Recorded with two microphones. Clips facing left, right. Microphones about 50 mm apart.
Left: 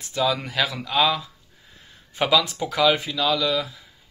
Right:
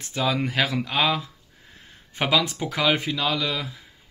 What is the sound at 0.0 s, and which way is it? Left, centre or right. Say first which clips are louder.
Speech: left 1 dB; right.